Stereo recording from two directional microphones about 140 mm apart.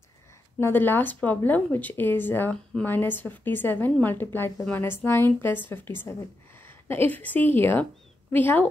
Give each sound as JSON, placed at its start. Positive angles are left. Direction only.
{"t": 0.6, "sound": "a woman's voice", "side_deg": 15}